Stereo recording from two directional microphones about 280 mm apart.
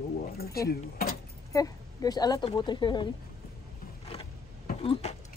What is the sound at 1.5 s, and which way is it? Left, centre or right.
Speech, centre.